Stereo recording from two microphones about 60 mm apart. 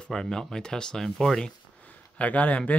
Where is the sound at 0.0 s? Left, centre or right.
Centre.